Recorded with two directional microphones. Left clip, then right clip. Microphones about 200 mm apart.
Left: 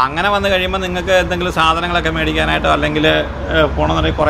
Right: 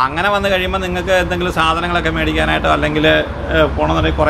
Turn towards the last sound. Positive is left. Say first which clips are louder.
# even
turn(degrees=10)  # may be behind; listen again after turning